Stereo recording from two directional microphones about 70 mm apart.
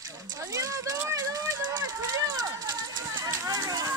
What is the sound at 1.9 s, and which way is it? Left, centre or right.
Run, right.